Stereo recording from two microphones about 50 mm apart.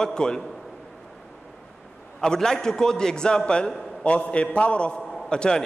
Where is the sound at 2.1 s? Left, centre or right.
Centre.